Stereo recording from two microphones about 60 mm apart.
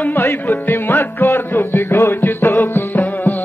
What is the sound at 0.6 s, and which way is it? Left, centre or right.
Music, left.